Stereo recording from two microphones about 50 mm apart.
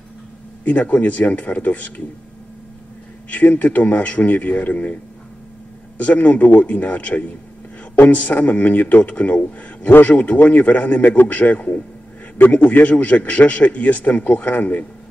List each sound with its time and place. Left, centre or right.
0.7 s a man's voice: left
3.3 s a man's voice: left
5.9 s a man's voice: left